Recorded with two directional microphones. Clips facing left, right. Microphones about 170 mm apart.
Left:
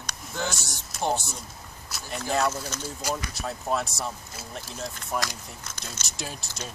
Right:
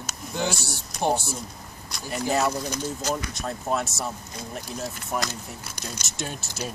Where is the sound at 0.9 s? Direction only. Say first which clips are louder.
Right 3 dB; centre (ahead or behind).